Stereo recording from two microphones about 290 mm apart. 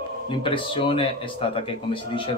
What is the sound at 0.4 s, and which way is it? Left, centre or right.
Speech, centre.